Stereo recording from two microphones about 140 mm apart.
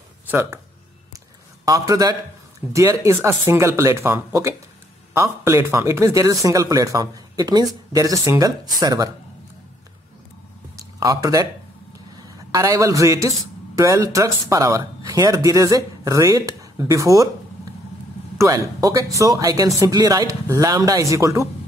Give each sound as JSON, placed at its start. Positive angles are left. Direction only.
{"t": 0.3, "sound": "speech", "side_deg": -15}
{"t": 1.7, "sound": "speech", "side_deg": -25}
{"t": 11.0, "sound": "a man's voice", "side_deg": -25}
{"t": 18.4, "sound": "speech", "side_deg": -25}